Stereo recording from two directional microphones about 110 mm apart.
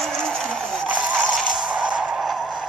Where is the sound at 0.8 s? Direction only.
10° right (ahead or behind).